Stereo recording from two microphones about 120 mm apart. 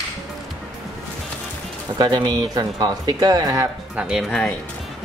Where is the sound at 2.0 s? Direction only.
40° right (ahead or behind).